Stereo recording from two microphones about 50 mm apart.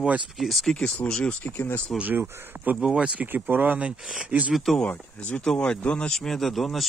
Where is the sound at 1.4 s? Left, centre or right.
Left.